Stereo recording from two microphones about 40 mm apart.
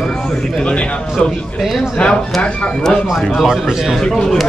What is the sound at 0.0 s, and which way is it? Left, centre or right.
Speech, left.